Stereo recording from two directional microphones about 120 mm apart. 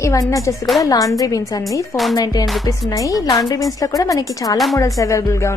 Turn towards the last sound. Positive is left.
turn(degrees=25)  # may be behind; listen again after turning